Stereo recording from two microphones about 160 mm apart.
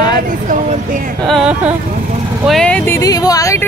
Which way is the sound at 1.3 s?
Centre (ahead or behind).